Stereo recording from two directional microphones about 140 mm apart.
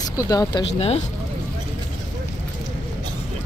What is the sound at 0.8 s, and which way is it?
Speech, 45° left (ahead or behind).